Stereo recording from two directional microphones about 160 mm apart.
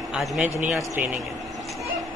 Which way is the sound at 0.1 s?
Centre (ahead or behind).